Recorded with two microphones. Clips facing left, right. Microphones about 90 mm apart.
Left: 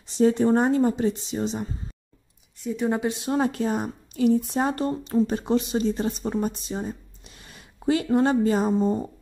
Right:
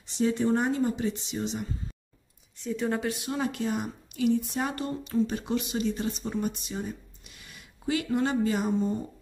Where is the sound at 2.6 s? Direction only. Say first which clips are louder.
Left 4 dB; 15° left (ahead or behind).